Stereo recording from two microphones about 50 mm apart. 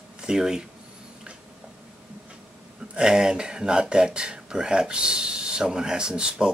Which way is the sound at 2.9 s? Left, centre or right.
Centre.